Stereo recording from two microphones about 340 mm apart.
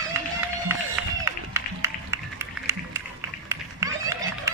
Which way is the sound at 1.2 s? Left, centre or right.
Centre.